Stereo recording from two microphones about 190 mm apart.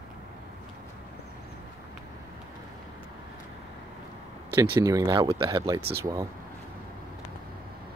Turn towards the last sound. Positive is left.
turn(degrees=-15)  # may be behind; listen again after turning